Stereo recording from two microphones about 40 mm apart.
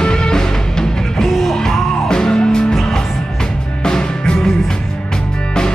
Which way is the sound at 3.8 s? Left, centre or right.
Centre.